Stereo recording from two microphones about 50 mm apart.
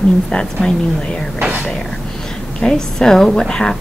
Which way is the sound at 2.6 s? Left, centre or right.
Centre.